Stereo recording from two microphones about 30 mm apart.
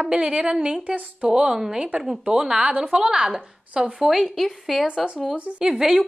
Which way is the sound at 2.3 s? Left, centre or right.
Right.